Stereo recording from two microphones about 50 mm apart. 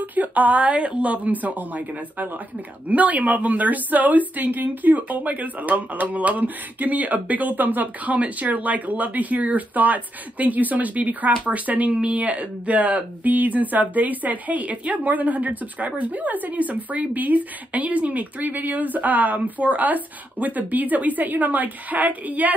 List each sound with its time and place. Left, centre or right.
0.0 s speech: right